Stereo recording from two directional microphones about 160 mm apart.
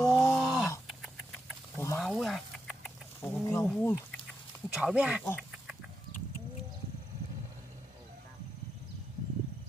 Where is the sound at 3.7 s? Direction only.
10° left (ahead or behind).